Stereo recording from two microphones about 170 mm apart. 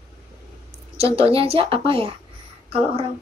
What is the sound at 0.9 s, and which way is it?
A woman's voice, 35° right (ahead or behind).